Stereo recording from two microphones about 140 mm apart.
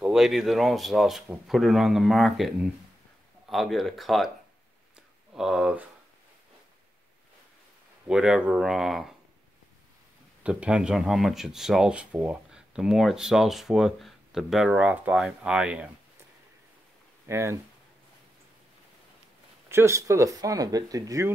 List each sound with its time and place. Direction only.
0.0 s speech: 5° right (ahead or behind)
4.9 s a sound: 5° right (ahead or behind)
8.1 s speech: 5° right (ahead or behind)
10.4 s speech: 10° right (ahead or behind)
17.3 s speech: 20° right (ahead or behind)
19.7 s speech: 20° right (ahead or behind)